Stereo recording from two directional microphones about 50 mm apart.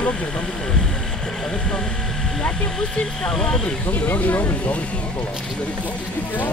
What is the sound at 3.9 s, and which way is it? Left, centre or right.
Speech, left.